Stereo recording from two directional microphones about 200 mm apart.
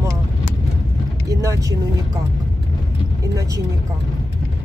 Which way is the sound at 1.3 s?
15° right (ahead or behind).